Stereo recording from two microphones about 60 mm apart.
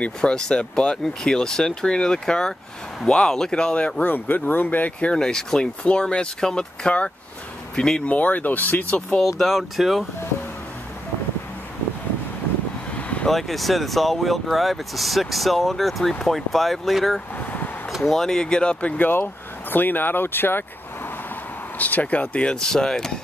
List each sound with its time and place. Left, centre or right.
0.0 s speech: centre
4.0 s speech: left
5.1 s speech: centre
8.1 s speech: left
9.4 s speech: centre
12.9 s vehicle: left
13.3 s speech: centre
17.4 s a sound: left
18.0 s speech: centre; by 20.6 s left
21.7 s speech: left; by 23.1 s centre